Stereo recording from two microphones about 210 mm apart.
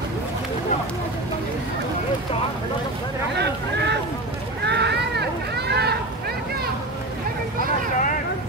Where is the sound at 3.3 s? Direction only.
55° right (ahead or behind).